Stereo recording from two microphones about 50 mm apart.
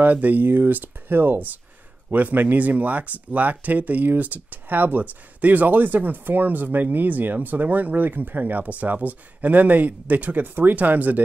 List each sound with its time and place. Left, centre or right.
0.0 s speech: right